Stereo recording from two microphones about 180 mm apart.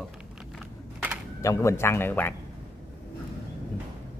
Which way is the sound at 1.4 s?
15° left (ahead or behind).